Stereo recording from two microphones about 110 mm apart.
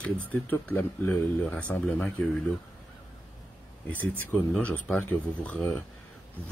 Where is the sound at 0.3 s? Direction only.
15° left (ahead or behind).